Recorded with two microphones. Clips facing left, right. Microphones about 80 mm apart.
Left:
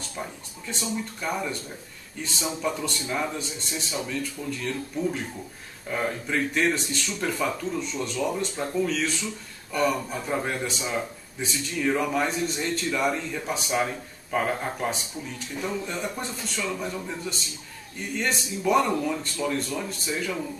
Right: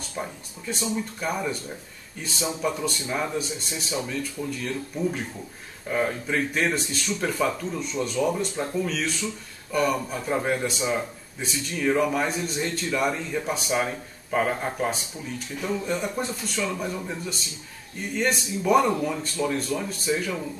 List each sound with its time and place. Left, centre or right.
0.2 s speech: centre